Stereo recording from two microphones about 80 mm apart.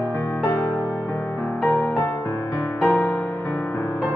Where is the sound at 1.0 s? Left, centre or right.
Centre.